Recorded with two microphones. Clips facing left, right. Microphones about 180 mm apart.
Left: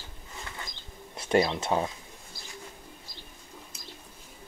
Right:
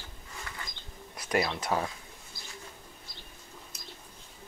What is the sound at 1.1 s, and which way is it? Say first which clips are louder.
Speech: left 5 dB; 25° left (ahead or behind).